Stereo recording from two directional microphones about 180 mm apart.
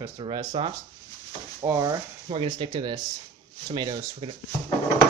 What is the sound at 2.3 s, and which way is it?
Speech, 30° right (ahead or behind).